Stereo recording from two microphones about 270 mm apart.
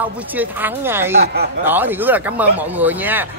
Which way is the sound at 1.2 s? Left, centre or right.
Right.